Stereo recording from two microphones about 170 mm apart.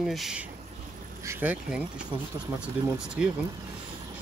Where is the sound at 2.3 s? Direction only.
20° right (ahead or behind).